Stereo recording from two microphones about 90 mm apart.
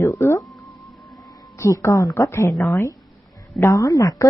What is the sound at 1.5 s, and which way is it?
Speech, 35° left (ahead or behind).